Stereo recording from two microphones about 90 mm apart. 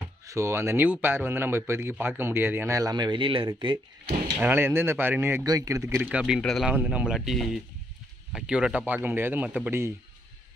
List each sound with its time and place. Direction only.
0.3 s a man's voice: 30° right (ahead or behind)
2.7 s speech: 45° right (ahead or behind); by 3.5 s 75° right (ahead or behind)
4.4 s a man's voice: 20° right (ahead or behind)
5.4 s speech: 40° right (ahead or behind)
5.9 s speech: 10° right (ahead or behind)
6.4 s speech: 5° left (ahead or behind)
6.7 s speech: 15° right (ahead or behind)
7.2 s speech: centre (ahead or behind)
8.8 s a man's voice: 20° right (ahead or behind)